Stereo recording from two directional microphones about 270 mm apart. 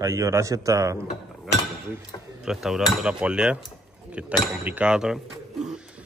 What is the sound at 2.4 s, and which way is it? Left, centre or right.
Cutlery, centre.